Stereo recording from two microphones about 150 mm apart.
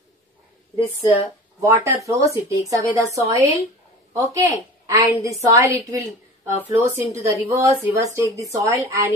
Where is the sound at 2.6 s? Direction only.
20° right (ahead or behind).